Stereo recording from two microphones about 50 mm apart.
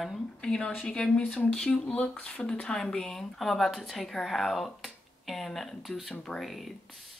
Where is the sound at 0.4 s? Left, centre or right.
Centre.